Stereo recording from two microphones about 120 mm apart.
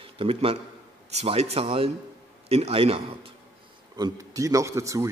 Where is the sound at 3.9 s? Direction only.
30° right (ahead or behind).